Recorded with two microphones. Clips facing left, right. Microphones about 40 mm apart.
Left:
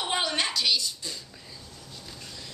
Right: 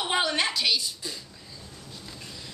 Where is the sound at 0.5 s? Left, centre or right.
Right.